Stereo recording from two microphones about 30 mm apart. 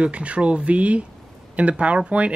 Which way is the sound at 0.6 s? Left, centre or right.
Right.